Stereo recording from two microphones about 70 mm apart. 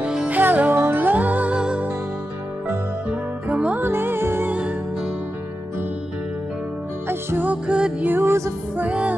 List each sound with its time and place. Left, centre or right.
0.0 s music: centre
0.3 s music: right
3.1 s music: centre
3.7 s music: right
4.5 s music: centre
7.1 s music: right
7.4 s music: centre
8.0 s music: right
8.7 s music: centre